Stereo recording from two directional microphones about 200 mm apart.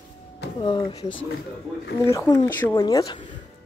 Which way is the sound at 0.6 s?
25° left (ahead or behind).